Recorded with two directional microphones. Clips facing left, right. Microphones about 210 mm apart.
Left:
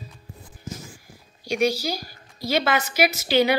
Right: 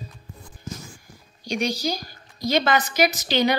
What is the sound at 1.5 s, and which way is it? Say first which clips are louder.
A woman's voice: left 2 dB; 5° left (ahead or behind).